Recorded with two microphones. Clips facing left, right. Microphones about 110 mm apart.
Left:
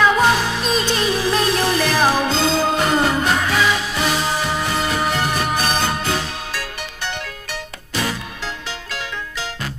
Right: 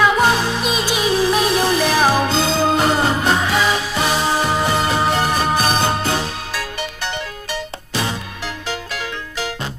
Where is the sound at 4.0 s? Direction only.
30° right (ahead or behind).